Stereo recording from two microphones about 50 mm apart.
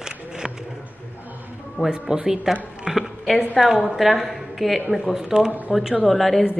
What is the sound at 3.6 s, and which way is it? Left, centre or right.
A woman's voice, centre.